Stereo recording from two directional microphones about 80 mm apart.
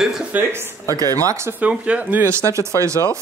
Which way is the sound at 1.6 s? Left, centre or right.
Centre.